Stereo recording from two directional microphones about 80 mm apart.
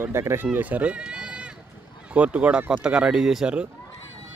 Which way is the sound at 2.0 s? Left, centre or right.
Centre.